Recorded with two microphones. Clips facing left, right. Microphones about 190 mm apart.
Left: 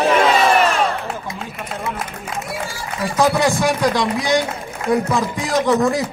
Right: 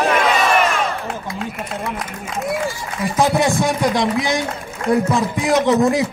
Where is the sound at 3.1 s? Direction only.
20° right (ahead or behind).